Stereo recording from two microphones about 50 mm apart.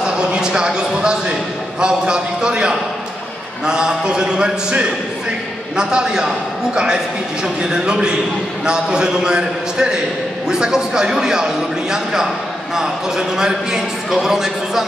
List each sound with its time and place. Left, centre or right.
0.0 s a man's voice: centre